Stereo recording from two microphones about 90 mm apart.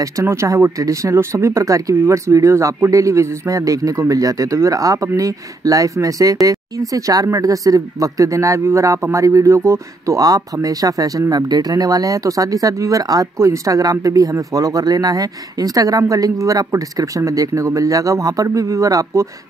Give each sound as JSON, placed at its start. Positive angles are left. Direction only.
{"t": 0.0, "sound": "speech", "side_deg": -35}